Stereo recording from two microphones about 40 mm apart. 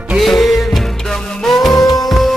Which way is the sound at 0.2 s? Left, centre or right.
Centre.